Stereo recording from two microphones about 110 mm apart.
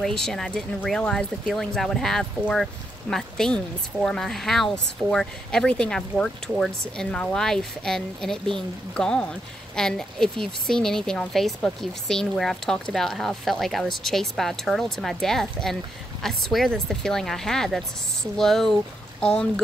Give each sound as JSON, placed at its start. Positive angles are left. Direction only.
{"t": 0.0, "sound": "speech", "side_deg": 5}